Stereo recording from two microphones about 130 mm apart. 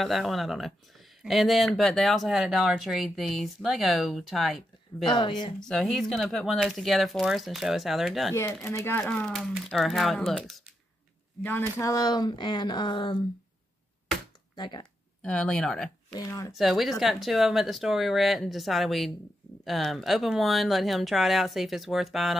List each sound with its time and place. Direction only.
0.0 s speech: centre (ahead or behind)
5.0 s speech: 35° left (ahead or behind)
5.6 s speech: 5° left (ahead or behind)
8.7 s speech: 15° left (ahead or behind)
9.0 s speech: 5° left (ahead or behind)
11.8 s speech: 30° left (ahead or behind)
14.5 s speech: 35° left (ahead or behind)
15.2 s speech: 5° left (ahead or behind)
16.1 s speech: 25° left (ahead or behind)
16.5 s speech: centre (ahead or behind)